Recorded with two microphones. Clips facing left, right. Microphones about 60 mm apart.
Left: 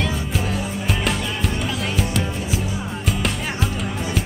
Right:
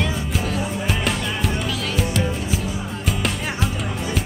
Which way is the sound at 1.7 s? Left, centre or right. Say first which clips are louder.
Even; left.